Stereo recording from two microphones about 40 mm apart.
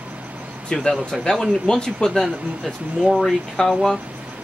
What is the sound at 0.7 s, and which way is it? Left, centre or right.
Speech, left.